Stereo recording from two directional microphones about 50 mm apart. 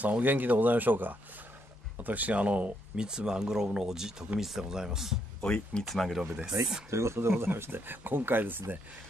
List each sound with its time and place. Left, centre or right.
0.0 s speech: right
3.1 s speech: centre
5.4 s speech: centre
5.9 s speech: centre
6.9 s speech: right